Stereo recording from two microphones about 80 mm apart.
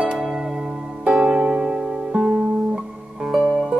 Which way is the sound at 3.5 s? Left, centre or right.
Centre.